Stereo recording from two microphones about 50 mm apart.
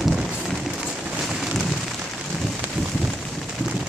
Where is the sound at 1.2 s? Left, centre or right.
Centre.